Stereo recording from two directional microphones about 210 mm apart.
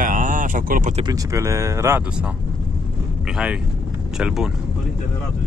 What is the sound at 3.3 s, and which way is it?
Speech, 5° right (ahead or behind).